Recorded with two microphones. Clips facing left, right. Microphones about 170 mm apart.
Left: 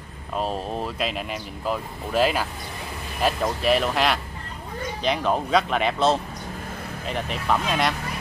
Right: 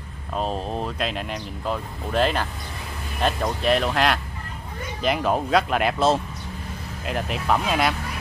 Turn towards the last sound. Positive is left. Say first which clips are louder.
# right 1 dB
turn(degrees=-5)  # may be behind; listen again after turning